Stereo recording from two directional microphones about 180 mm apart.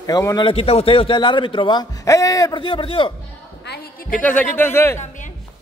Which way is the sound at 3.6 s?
55° left (ahead or behind).